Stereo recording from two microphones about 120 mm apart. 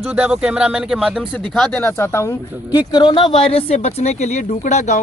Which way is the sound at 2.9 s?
40° left (ahead or behind).